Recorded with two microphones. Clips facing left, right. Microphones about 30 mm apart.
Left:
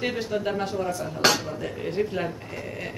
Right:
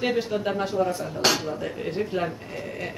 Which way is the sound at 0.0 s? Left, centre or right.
Centre.